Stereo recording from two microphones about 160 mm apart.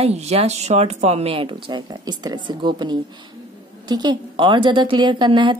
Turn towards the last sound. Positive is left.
turn(degrees=-30)  # may be behind; listen again after turning